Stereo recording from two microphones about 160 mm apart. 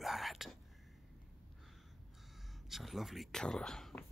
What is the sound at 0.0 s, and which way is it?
Whispering, centre (ahead or behind).